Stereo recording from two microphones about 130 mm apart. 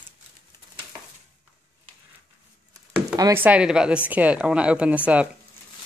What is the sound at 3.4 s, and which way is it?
Speech, 10° right (ahead or behind).